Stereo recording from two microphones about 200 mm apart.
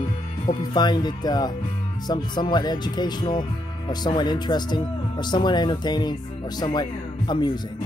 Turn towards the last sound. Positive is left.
turn(degrees=20)  # may be behind; listen again after turning